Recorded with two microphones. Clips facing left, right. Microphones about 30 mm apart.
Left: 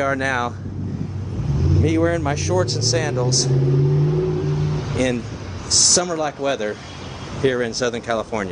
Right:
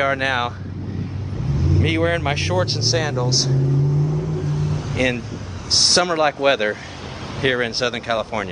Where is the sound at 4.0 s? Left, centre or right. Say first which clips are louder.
Left 3 dB; left.